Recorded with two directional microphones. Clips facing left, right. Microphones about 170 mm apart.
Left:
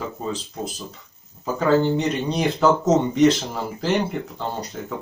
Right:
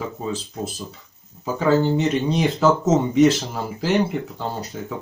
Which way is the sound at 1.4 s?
5° right (ahead or behind).